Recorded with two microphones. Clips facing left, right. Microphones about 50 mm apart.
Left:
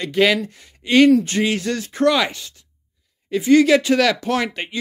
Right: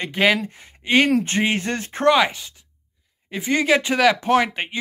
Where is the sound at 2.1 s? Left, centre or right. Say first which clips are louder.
Right 2 dB; centre.